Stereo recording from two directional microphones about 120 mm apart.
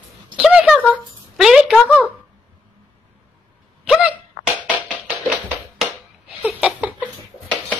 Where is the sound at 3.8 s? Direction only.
10° right (ahead or behind).